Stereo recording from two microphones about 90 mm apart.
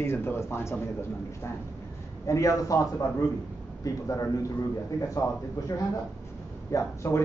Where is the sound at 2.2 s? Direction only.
35° left (ahead or behind).